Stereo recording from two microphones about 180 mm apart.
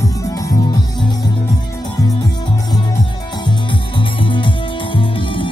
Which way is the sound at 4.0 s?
30° left (ahead or behind).